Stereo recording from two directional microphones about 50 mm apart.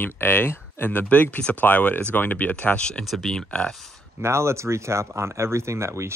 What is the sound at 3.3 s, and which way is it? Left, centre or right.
Speech, left.